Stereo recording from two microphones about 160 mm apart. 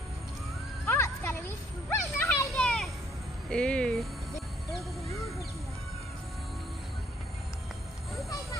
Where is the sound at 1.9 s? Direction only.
15° left (ahead or behind).